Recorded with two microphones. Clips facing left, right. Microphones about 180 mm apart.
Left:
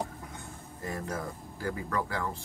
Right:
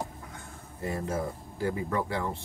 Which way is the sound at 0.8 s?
25° right (ahead or behind).